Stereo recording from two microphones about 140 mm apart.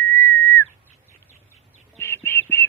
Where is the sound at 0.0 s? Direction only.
15° left (ahead or behind).